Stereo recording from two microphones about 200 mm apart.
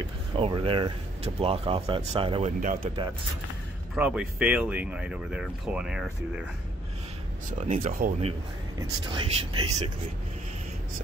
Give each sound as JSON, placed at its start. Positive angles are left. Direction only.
{"t": 0.4, "sound": "speech", "side_deg": -25}
{"t": 2.6, "sound": "speech", "side_deg": -45}
{"t": 3.9, "sound": "speech", "side_deg": -5}
{"t": 7.6, "sound": "speech", "side_deg": -35}